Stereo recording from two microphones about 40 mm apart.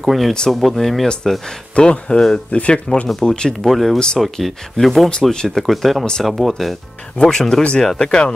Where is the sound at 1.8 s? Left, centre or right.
Left.